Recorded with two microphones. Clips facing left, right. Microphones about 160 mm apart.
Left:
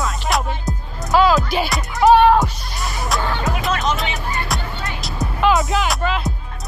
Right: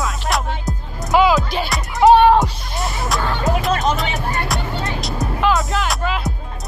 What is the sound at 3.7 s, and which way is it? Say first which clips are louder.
Music: right 2 dB; 40° right (ahead or behind).